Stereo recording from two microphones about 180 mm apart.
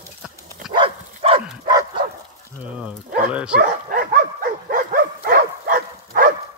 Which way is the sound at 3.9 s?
50° right (ahead or behind).